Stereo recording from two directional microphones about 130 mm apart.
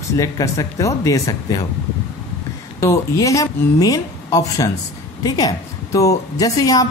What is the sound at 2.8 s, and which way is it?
A woman's voice, 25° left (ahead or behind).